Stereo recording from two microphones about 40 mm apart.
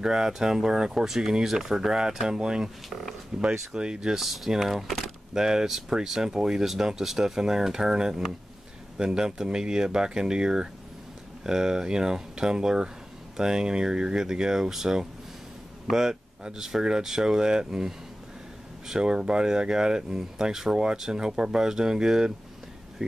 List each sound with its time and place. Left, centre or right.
0.0 s speech: centre
4.2 s speech: centre
5.3 s speech: centre